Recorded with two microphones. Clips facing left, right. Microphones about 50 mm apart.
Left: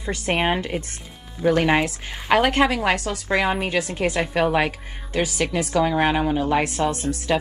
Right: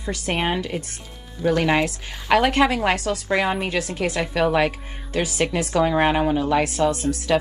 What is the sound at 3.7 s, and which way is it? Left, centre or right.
Speech, left.